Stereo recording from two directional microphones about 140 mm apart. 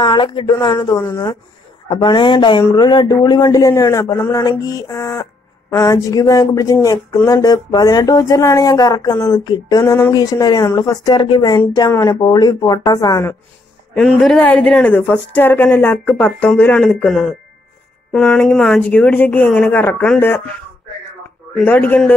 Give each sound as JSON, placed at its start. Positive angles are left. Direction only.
{"t": 0.0, "sound": "a man's voice", "side_deg": 35}
{"t": 13.9, "sound": "a woman's voice", "side_deg": 5}
{"t": 21.5, "sound": "a woman's voice", "side_deg": 10}